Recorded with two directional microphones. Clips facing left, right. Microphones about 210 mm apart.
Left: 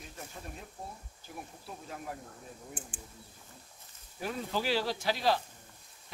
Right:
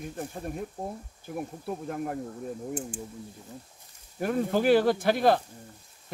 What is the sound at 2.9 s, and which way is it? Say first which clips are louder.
Speech: right 12 dB; 40° right (ahead or behind).